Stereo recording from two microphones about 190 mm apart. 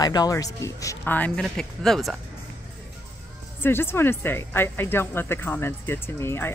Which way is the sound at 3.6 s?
10° left (ahead or behind).